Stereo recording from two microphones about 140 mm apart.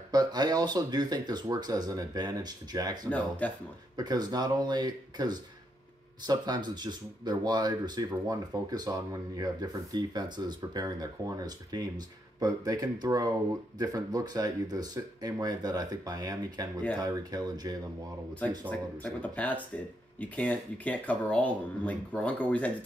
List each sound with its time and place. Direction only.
0.1 s speech: 30° right (ahead or behind)
3.1 s speech: 10° left (ahead or behind)
3.9 s speech: 30° right (ahead or behind)
19.2 s speech: 10° left (ahead or behind)